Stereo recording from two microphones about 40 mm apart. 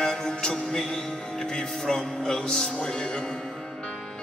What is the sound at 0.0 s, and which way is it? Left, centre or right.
Music, centre.